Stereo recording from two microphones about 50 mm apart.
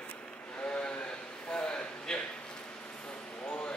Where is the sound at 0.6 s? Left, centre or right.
Left.